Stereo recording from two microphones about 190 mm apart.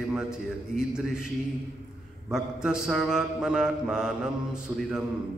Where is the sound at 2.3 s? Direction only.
5° right (ahead or behind).